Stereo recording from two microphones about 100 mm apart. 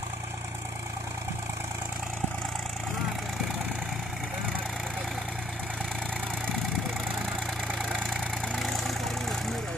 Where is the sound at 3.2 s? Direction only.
5° right (ahead or behind).